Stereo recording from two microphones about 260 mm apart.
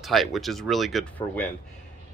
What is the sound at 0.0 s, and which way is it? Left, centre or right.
Speech, centre.